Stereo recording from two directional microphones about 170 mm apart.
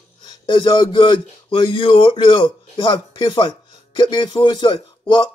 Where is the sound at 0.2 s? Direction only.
25° left (ahead or behind).